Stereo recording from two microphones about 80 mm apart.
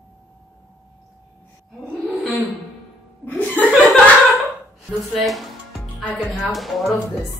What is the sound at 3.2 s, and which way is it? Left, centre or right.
Chuckle, left.